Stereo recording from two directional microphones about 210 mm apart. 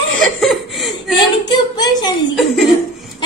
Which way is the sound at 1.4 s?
20° left (ahead or behind).